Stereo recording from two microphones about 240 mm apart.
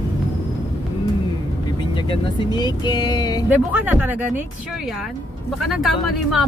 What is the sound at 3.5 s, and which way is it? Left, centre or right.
Speech, centre.